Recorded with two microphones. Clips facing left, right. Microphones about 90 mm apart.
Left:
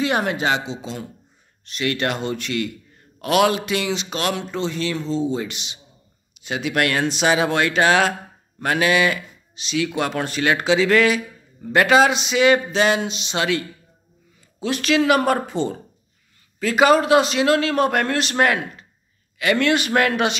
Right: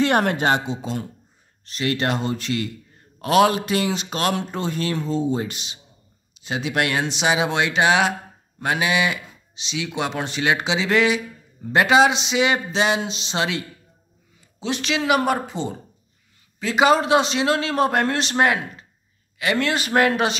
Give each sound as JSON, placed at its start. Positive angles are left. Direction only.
{"t": 0.0, "sound": "speech", "side_deg": -55}
{"t": 1.7, "sound": "speech", "side_deg": -30}
{"t": 6.4, "sound": "speech", "side_deg": -25}